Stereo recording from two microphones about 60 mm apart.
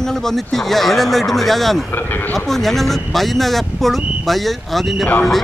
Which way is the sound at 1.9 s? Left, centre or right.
Left.